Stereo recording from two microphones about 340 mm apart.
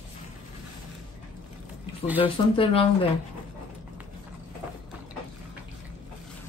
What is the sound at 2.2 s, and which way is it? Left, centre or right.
Speech, centre.